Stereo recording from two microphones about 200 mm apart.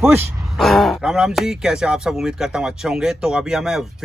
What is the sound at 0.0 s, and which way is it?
Speech, 10° right (ahead or behind).